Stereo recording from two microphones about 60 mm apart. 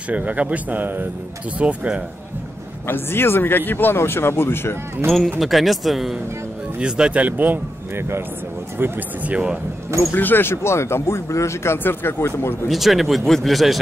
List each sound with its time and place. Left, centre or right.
0.1 s speech: right
2.9 s speech: left
5.4 s speech: centre
6.8 s speech: centre
8.7 s speech: right
9.3 s speech: centre
10.1 s speech: left
12.6 s speech: centre